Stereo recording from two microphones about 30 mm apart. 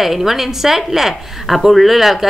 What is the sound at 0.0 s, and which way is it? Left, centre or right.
A woman's voice, centre.